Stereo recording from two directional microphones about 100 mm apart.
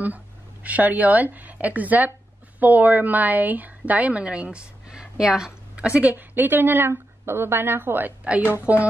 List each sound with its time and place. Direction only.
0.7 s a woman's voice: 15° right (ahead or behind)